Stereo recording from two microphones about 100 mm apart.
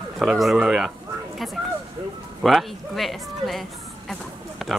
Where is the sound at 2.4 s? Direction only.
Centre (ahead or behind).